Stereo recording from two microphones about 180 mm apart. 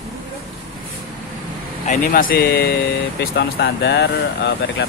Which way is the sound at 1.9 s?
50° left (ahead or behind).